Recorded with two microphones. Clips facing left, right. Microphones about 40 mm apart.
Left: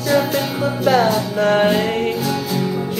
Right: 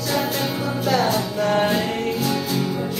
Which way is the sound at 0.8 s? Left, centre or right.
Centre.